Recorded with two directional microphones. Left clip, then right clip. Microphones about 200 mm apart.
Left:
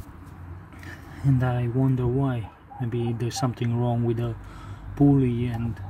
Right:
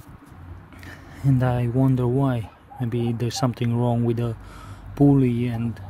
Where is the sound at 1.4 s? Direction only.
30° right (ahead or behind).